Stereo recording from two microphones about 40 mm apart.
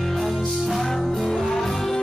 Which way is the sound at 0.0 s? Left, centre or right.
Centre.